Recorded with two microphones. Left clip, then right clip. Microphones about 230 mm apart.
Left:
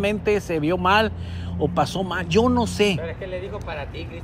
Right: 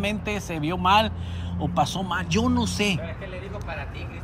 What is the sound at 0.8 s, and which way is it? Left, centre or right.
Speech, right.